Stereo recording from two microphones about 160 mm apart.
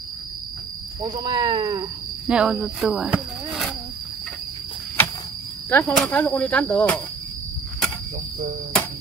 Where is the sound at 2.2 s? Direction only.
5° right (ahead or behind).